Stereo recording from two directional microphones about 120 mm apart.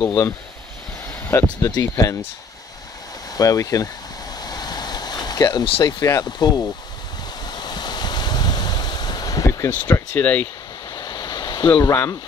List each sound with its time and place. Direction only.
0.0 s speech: 20° left (ahead or behind)
1.3 s speech: 20° left (ahead or behind)
3.3 s speech: 30° left (ahead or behind)
4.4 s vehicle: 35° left (ahead or behind)
5.7 s speech: 45° left (ahead or behind)
5.9 s speech: 30° left (ahead or behind)
7.4 s waves: 35° left (ahead or behind); by 10.2 s 20° left (ahead or behind)
10.2 s speech: 10° left (ahead or behind)
11.0 s a sound: 35° left (ahead or behind)
11.8 s speech: 25° left (ahead or behind)